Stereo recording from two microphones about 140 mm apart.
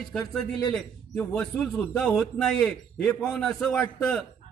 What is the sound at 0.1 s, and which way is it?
A man's voice, 5° left (ahead or behind).